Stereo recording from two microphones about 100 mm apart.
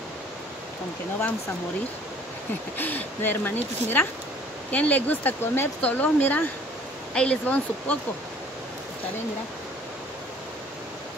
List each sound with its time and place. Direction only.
2.8 s speech: 20° left (ahead or behind)